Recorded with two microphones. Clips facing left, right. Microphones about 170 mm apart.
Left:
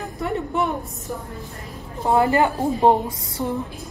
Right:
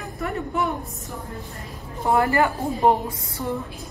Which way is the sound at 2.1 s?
20° left (ahead or behind).